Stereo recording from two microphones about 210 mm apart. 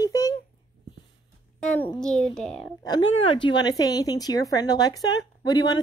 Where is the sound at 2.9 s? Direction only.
25° left (ahead or behind).